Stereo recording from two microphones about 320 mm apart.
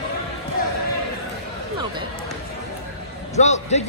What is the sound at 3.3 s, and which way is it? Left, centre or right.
Speech, left.